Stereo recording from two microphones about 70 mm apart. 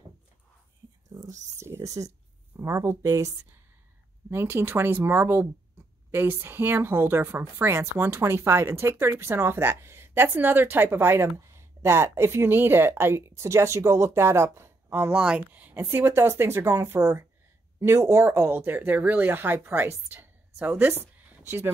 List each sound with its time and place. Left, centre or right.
1.1 s speech: right
2.5 s a sound: right
3.0 s speech: right
4.3 s a woman's voice: right
15.1 s speech: centre
15.7 s a woman's voice: right
20.6 s speech: right